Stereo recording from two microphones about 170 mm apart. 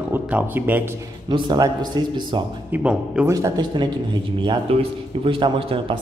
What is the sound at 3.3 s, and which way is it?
A man's voice, 20° right (ahead or behind).